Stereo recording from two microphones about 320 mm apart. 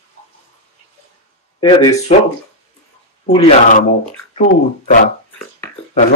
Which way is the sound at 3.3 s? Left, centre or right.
Centre.